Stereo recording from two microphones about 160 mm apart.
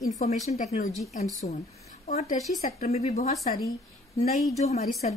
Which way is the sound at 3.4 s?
65° left (ahead or behind).